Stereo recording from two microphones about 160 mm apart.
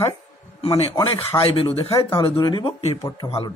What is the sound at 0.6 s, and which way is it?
Speech, 40° left (ahead or behind).